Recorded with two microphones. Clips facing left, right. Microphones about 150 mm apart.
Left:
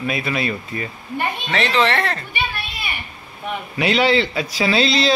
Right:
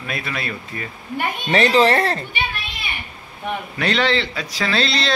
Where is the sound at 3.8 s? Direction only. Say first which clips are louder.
Left 4 dB; 10° left (ahead or behind).